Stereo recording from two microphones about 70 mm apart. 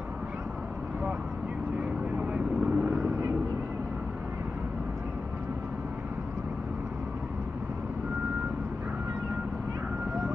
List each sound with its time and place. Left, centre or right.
1.8 s vehicle: right